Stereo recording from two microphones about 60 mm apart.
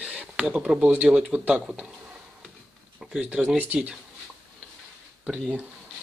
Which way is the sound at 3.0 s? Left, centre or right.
Centre.